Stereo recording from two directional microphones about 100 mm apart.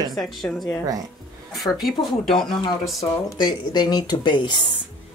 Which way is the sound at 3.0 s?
40° left (ahead or behind).